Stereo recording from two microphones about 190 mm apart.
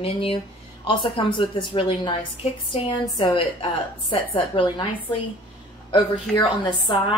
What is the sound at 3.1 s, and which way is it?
A woman's voice, 25° left (ahead or behind).